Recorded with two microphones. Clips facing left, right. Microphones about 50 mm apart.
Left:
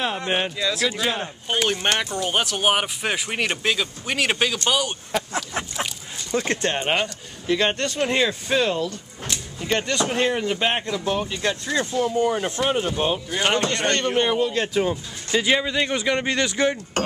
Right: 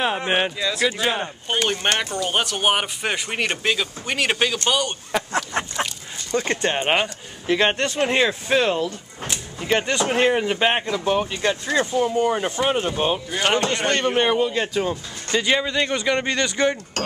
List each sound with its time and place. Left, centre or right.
0.0 s speech: centre
0.6 s a man's voice: centre
5.1 s a man's voice: centre
6.7 s a man's voice: centre